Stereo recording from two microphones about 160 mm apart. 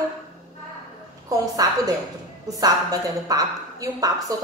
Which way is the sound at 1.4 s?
25° right (ahead or behind).